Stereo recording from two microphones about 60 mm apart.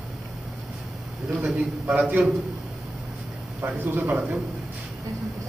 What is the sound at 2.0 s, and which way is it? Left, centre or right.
Speech, right.